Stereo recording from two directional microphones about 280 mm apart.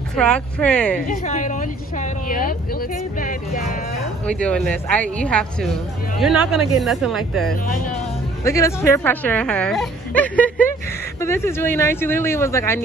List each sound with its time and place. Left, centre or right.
0.1 s speech: centre
1.0 s a woman's voice: left
4.3 s speech: centre